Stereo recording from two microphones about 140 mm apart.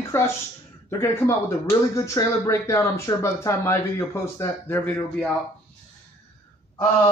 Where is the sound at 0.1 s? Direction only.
20° left (ahead or behind).